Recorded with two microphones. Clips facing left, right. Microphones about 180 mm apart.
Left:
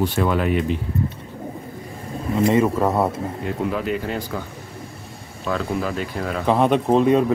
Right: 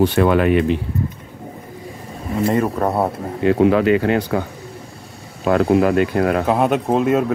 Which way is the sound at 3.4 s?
80° right.